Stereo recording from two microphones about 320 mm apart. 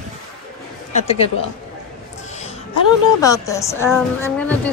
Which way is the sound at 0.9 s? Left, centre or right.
Centre.